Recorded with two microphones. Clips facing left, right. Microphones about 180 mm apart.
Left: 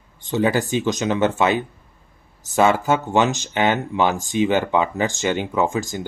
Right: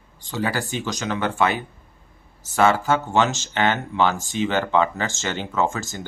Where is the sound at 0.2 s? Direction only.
20° left (ahead or behind).